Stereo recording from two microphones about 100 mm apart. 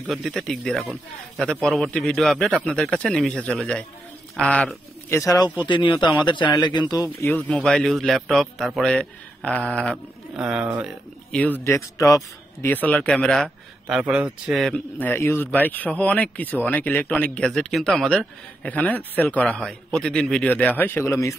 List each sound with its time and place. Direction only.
0.0 s a man's voice: centre (ahead or behind)
5.1 s speech: 35° left (ahead or behind)
5.7 s speech: 50° left (ahead or behind)
7.2 s a man's voice: 15° left (ahead or behind); by 8.9 s centre (ahead or behind)
8.9 s a man's voice: 10° left (ahead or behind)
10.3 s speech: 10° right (ahead or behind)
11.3 s speech: 15° left (ahead or behind)
11.6 s speech: 30° left (ahead or behind)
12.6 s speech: 15° left (ahead or behind)
13.8 s speech: 5° right (ahead or behind)
15.0 s speech: 20° left (ahead or behind)
17.5 s a man's voice: 5° left (ahead or behind)
20.4 s speech: 15° left (ahead or behind)
21.0 s speech: 30° left (ahead or behind)